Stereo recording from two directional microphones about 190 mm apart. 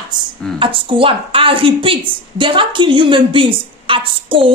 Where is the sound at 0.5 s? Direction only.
25° right (ahead or behind).